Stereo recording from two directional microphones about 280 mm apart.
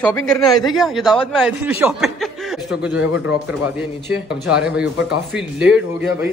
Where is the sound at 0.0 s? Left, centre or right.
Centre.